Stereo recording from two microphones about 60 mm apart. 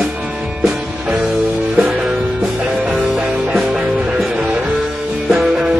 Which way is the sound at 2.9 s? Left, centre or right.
Centre.